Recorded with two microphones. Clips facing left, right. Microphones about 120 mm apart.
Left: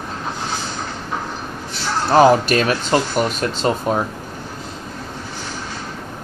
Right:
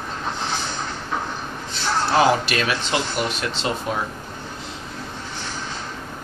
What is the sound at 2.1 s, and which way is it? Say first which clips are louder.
Speech: left 7 dB; 45° left (ahead or behind).